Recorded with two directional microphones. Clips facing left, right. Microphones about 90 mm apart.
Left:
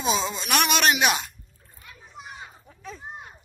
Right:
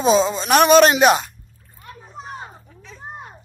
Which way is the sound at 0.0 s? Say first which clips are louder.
Right 10 dB; 35° right (ahead or behind).